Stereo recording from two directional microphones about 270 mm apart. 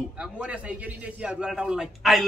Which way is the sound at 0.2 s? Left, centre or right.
Centre.